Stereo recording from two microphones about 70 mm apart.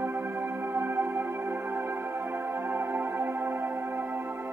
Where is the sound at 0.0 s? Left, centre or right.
Right.